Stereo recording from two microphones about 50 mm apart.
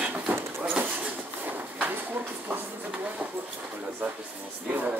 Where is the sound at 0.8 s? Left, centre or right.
Right.